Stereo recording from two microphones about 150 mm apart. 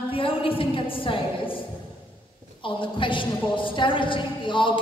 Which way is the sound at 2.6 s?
35° left (ahead or behind).